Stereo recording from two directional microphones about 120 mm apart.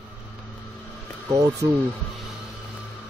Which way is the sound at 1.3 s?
25° right (ahead or behind).